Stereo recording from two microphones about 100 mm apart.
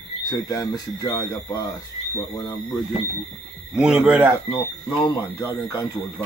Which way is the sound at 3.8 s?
10° right (ahead or behind).